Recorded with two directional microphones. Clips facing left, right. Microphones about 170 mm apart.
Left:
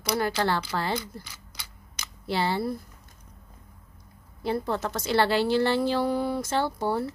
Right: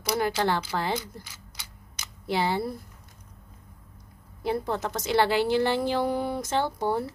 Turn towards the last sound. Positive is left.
turn(degrees=-15)  # may be behind; listen again after turning